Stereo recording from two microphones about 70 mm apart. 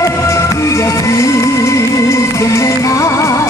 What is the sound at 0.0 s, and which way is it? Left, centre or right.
Music, left.